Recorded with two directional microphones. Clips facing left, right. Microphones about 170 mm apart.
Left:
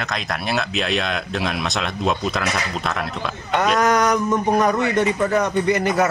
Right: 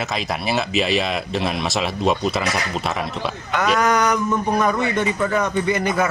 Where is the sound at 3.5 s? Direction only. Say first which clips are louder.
Left 1 dB; 40° left (ahead or behind).